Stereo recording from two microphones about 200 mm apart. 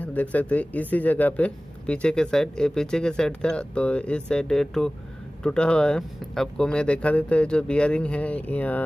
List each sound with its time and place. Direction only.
0.0 s speech: 5° left (ahead or behind)